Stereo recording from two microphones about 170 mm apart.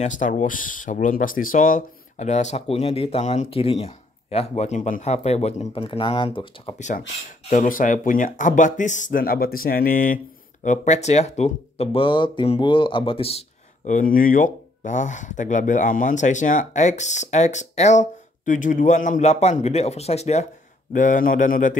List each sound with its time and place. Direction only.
0.0 s speech: 50° left (ahead or behind); by 6.7 s 30° left (ahead or behind)
7.4 s speech: 50° left (ahead or behind)